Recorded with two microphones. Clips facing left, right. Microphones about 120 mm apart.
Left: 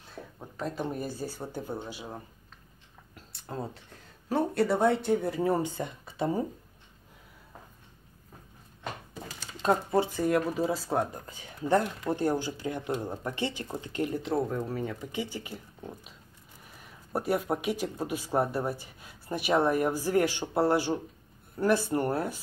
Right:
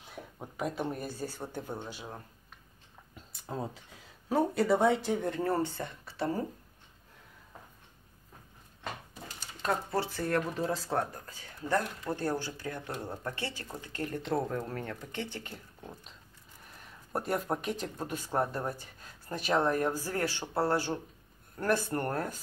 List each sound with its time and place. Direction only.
0.0 s speech: 10° right (ahead or behind); by 2.2 s 10° left (ahead or behind)
3.2 s speech: centre (ahead or behind); by 6.4 s 15° left (ahead or behind)
9.6 s speech: 20° left (ahead or behind)
14.1 s speech: 5° left (ahead or behind)
17.1 s speech: 5° left (ahead or behind)